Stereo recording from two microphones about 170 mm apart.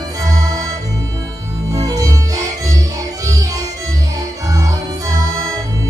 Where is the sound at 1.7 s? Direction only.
20° right (ahead or behind).